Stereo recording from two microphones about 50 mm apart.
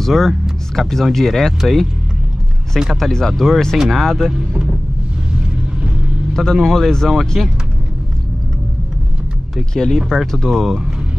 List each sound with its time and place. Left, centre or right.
0.0 s speech: centre
2.9 s speech: centre
4.3 s speech: centre
6.3 s a man's voice: centre
9.9 s speech: centre